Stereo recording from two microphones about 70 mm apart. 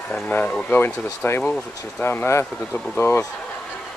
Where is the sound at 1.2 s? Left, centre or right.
Left.